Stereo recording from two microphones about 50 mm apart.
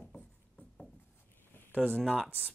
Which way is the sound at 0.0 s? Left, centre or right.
Left.